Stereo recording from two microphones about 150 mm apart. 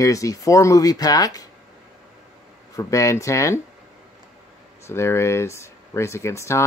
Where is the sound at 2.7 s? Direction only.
20° left (ahead or behind).